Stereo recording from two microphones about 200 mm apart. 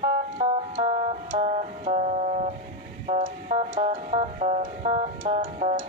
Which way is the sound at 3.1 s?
35° right (ahead or behind).